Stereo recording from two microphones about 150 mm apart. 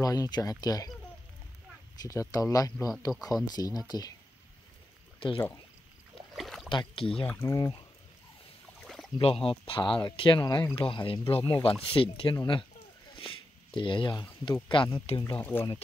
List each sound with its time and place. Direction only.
0.0 s speech: 25° left (ahead or behind)
2.0 s speech: 25° left (ahead or behind)
6.3 s a sound: centre (ahead or behind)
6.7 s speech: 35° left (ahead or behind)
7.2 s speech: 15° left (ahead or behind)
7.5 s speech: 25° left (ahead or behind)
9.2 s speech: 40° left (ahead or behind)
13.1 s a sound: 35° left (ahead or behind)
13.7 s speech: 35° left (ahead or behind)
15.3 s speech: 15° left (ahead or behind)